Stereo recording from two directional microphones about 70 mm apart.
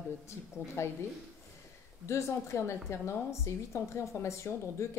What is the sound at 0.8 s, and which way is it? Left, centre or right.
Speech, left.